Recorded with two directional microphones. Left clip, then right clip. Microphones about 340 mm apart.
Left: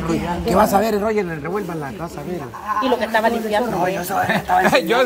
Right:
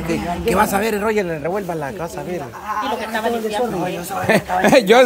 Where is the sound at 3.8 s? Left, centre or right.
Left.